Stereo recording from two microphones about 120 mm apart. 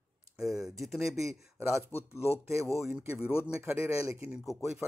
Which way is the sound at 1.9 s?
20° left (ahead or behind).